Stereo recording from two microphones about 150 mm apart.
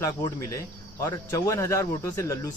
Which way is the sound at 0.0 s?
20° left (ahead or behind).